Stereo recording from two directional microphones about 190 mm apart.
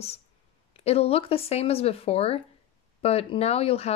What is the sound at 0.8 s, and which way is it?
Speech, 30° left (ahead or behind).